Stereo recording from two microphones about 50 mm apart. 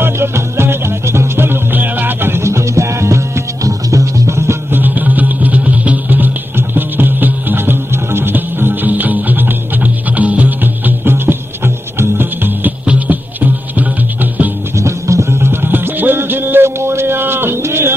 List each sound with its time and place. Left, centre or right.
0.0 s music: right
2.4 s music: right
4.6 s music: right
12.8 s music: right
14.8 s music: right
15.5 s music: right